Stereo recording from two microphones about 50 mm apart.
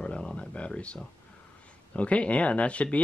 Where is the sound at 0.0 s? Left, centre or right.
Left.